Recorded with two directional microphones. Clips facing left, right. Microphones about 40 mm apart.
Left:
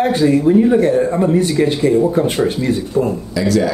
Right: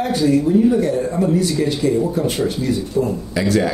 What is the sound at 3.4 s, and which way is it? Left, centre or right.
Speech, right.